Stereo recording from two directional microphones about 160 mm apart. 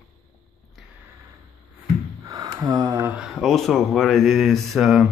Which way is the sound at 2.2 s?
25° right (ahead or behind).